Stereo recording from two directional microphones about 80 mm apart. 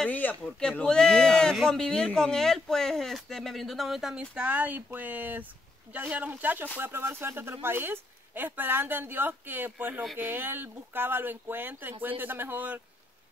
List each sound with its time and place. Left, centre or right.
0.1 s speech: left
0.4 s speech: centre; by 12.8 s right